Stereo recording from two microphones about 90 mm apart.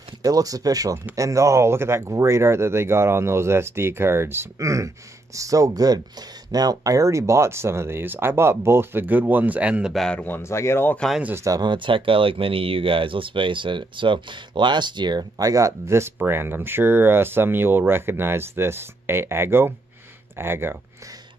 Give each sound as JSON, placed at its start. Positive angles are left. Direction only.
{"t": 0.2, "sound": "speech", "side_deg": -40}
{"t": 9.9, "sound": "speech", "side_deg": 5}
{"t": 10.2, "sound": "speech", "side_deg": 25}
{"t": 11.3, "sound": "speech", "side_deg": -40}
{"t": 11.6, "sound": "speech", "side_deg": -65}